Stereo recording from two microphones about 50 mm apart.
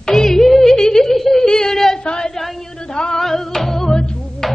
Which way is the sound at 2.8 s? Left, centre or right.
Centre.